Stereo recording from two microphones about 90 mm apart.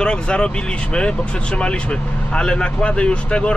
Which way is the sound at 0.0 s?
10° left (ahead or behind).